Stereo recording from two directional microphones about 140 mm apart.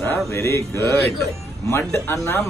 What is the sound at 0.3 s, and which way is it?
Speech, 20° left (ahead or behind).